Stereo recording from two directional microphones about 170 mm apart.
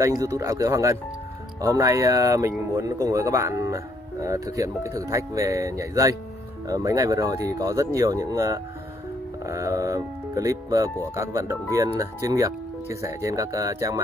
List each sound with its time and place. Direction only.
0.0 s speech: 20° right (ahead or behind)